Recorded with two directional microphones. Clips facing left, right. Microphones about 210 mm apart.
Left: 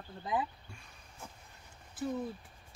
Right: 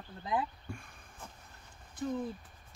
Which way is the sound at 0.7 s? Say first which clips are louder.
Right 10 dB; 50° right (ahead or behind).